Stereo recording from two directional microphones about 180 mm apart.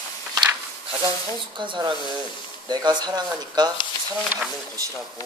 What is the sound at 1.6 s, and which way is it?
Speech, 25° right (ahead or behind).